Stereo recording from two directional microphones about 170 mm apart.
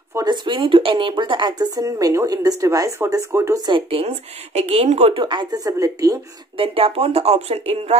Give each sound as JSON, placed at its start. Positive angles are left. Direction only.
{"t": 0.1, "sound": "a woman's voice", "side_deg": -25}
{"t": 6.5, "sound": "speech", "side_deg": -35}